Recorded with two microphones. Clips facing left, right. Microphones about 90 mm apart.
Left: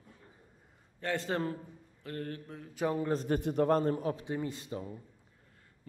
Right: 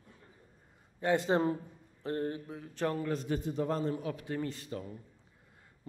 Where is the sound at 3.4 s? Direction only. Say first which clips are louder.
Left 5 dB; 60° left (ahead or behind).